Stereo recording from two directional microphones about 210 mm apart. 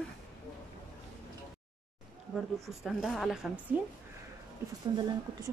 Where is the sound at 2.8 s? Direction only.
Centre (ahead or behind).